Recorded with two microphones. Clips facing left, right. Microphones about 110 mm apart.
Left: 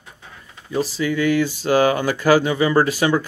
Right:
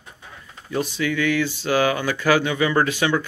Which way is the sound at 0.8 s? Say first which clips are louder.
Left 3 dB; 35° left (ahead or behind).